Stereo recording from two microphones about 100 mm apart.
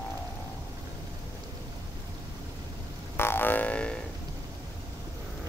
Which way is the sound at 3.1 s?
20° left (ahead or behind).